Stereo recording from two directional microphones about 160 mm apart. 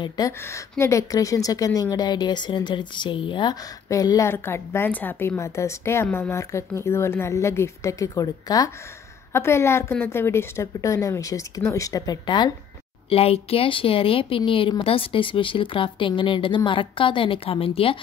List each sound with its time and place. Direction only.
0.3 s a woman's voice: 15° left (ahead or behind)
13.1 s speech: 35° left (ahead or behind)